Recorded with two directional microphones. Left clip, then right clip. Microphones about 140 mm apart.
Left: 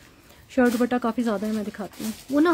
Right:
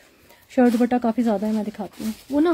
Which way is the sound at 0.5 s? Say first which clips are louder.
Right 3 dB; 5° right (ahead or behind).